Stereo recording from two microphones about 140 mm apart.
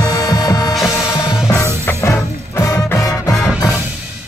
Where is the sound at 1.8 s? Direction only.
20° left (ahead or behind).